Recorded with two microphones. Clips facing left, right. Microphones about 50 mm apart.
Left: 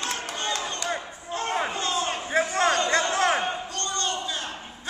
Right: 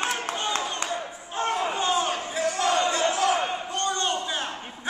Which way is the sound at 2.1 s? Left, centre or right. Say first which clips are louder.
Left 2 dB; left.